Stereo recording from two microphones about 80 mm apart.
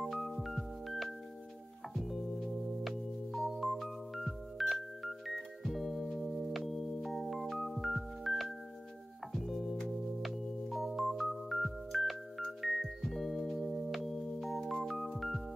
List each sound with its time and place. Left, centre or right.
0.0 s music: centre